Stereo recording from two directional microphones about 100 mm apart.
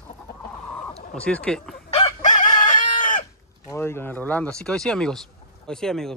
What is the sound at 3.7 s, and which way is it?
Speech, 25° left (ahead or behind).